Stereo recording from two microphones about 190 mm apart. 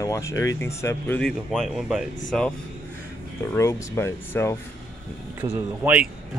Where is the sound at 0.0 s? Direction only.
15° left (ahead or behind).